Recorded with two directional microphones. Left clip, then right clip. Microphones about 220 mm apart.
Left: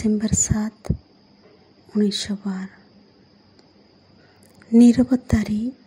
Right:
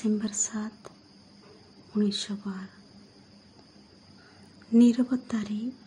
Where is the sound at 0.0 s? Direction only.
25° left (ahead or behind).